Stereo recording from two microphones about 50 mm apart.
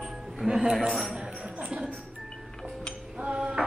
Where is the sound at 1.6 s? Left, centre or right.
Right.